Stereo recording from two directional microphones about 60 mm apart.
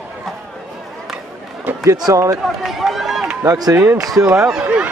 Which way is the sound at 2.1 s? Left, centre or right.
Right.